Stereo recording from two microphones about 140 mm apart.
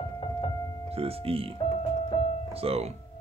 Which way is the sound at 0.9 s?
45° right (ahead or behind).